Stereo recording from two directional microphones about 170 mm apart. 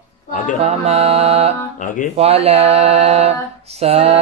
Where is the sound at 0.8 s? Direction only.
40° right (ahead or behind).